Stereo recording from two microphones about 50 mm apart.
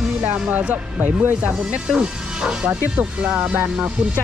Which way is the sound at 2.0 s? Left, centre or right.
Right.